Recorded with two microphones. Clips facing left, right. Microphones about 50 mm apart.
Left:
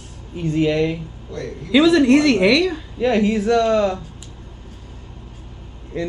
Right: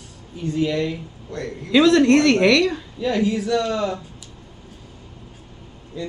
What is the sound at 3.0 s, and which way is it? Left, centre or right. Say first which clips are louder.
A woman's voice: left 4 dB; left.